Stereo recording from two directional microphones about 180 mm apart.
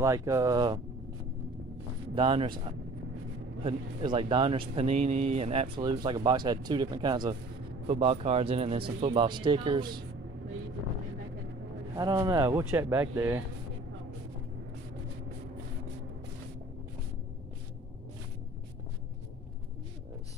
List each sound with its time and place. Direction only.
0.0 s speech: 15° right (ahead or behind)
2.1 s speech: 30° right (ahead or behind)
3.6 s speech: 30° right (ahead or behind)
5.8 s speech: 25° right (ahead or behind)
11.9 s speech: 20° right (ahead or behind)